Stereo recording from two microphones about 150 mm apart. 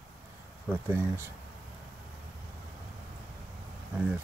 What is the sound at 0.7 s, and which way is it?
Speech, 15° right (ahead or behind).